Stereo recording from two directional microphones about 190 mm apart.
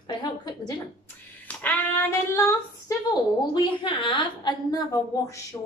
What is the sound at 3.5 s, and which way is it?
A woman's voice, 25° left (ahead or behind).